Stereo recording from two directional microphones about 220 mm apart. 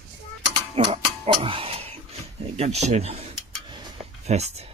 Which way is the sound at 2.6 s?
30° right (ahead or behind).